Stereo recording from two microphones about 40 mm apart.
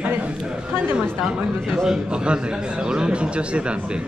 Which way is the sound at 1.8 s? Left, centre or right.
Centre.